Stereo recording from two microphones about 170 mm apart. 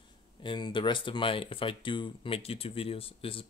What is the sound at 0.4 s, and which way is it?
Speech, 25° left (ahead or behind).